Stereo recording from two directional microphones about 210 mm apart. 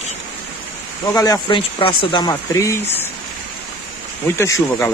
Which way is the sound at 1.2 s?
20° left (ahead or behind).